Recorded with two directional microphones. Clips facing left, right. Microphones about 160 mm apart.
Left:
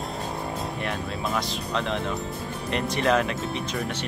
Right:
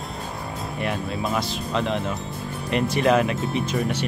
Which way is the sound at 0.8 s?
5° right (ahead or behind).